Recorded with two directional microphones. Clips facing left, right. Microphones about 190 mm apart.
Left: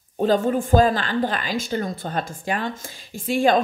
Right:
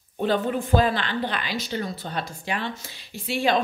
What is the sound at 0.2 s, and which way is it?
A woman's voice, 40° left (ahead or behind).